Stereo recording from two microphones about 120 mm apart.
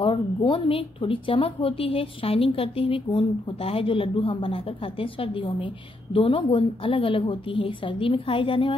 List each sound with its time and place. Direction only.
0.0 s a woman's voice: 45° left (ahead or behind)